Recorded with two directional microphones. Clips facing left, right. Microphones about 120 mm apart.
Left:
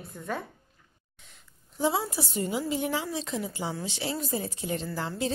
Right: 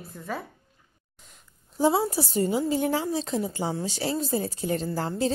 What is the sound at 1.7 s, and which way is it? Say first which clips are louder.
A woman's voice: right 5 dB; 35° right (ahead or behind).